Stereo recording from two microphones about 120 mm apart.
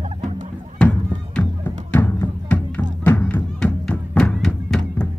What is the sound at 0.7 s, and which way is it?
Music, 10° left (ahead or behind).